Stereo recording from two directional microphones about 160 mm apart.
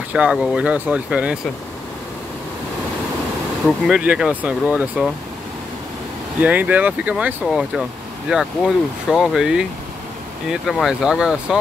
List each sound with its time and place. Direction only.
0.1 s speech: 5° right (ahead or behind)
3.6 s speech: 5° right (ahead or behind)
6.4 s speech: 10° right (ahead or behind)